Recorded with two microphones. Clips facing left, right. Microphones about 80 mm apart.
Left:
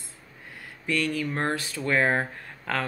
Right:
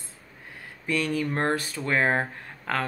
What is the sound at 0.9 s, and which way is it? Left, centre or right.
Speech, right.